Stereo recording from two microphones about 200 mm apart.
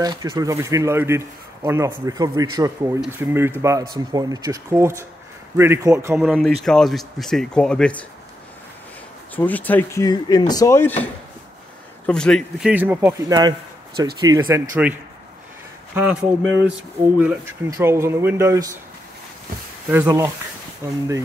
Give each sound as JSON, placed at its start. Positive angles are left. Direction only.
{"t": 0.0, "sound": "speech", "side_deg": -20}
{"t": 6.1, "sound": "speech", "side_deg": 0}
{"t": 9.3, "sound": "speech", "side_deg": 10}
{"t": 12.1, "sound": "speech", "side_deg": 5}
{"t": 13.3, "sound": "a man's voice", "side_deg": -20}
{"t": 17.2, "sound": "speech", "side_deg": -10}
{"t": 19.9, "sound": "speech", "side_deg": -10}